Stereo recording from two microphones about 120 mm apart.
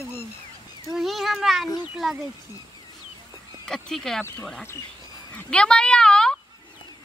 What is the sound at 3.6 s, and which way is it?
Speech, 5° left (ahead or behind).